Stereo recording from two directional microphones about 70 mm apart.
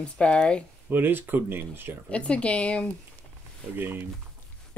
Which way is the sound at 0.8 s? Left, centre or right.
Right.